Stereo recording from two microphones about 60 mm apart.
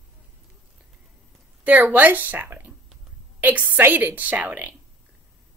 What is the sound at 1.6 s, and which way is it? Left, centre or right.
A woman's voice, right.